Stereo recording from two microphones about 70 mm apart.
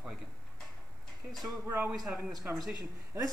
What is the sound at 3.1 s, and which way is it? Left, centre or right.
Speech, right.